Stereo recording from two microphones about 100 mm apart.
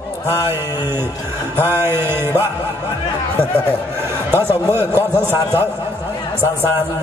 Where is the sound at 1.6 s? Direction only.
20° right (ahead or behind).